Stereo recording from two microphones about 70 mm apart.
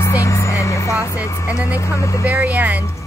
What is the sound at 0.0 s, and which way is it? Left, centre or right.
Music, left.